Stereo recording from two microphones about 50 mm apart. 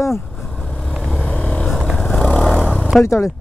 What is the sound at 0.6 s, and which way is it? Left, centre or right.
Vehicle, centre.